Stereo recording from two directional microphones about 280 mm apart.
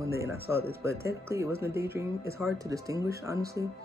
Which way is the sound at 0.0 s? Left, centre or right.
Centre.